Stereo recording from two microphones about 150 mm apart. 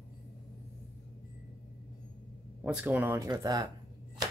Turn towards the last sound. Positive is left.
turn(degrees=-25)  # may be behind; listen again after turning